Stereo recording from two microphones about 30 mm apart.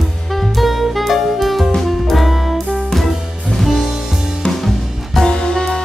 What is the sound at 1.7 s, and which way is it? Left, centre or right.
Music, centre.